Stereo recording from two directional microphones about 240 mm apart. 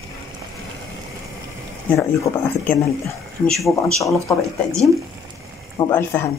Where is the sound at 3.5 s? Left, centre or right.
Centre.